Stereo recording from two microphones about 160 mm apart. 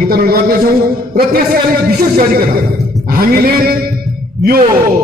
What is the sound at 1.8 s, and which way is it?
Speech, 65° right (ahead or behind).